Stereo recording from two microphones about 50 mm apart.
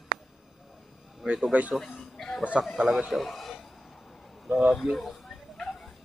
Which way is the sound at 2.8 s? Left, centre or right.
Centre.